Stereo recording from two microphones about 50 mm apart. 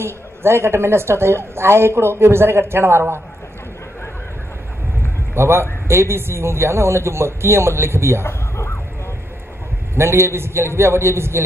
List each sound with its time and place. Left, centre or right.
0.0 s a man's voice: right
5.3 s a man's voice: right
8.2 s a sound: left
9.9 s a man's voice: right